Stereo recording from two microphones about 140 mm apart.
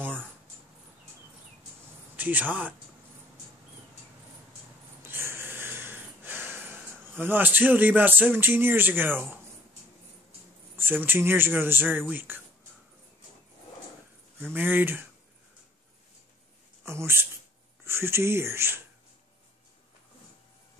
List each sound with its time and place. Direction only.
2.1 s speech: 10° right (ahead or behind)
5.0 s snort: 15° right (ahead or behind)
7.2 s speech: 15° right (ahead or behind)
10.8 s speech: 15° right (ahead or behind)
14.4 s speech: 15° right (ahead or behind)
16.8 s speech: 20° right (ahead or behind)